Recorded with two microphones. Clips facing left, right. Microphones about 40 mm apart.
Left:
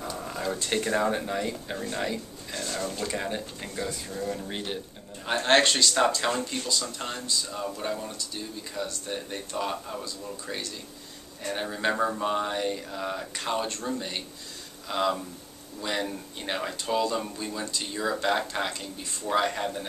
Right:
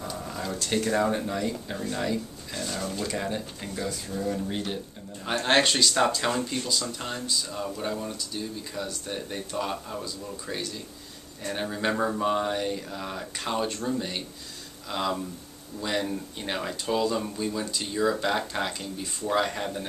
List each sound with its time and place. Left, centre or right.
0.0 s speech: centre
4.5 s speech: centre
5.2 s speech: centre